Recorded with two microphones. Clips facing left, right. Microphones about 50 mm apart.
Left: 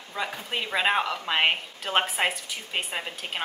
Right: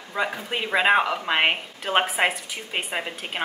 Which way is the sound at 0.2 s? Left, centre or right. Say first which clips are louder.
Right 4 dB; centre.